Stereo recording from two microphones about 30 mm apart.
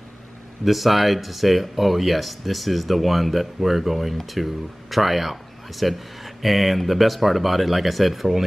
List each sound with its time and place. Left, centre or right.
0.7 s speech: centre